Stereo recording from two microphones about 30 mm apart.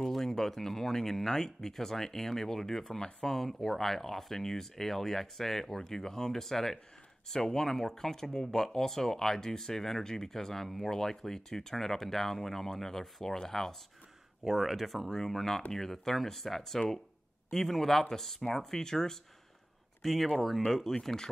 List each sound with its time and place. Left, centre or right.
0.2 s speech: centre
14.4 s speech: centre
15.0 s speech: centre
20.0 s speech: centre